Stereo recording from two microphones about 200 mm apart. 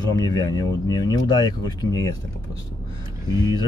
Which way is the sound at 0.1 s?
20° left (ahead or behind).